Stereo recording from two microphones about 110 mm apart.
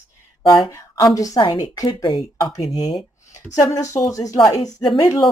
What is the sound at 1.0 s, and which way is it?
Speech, 30° left (ahead or behind).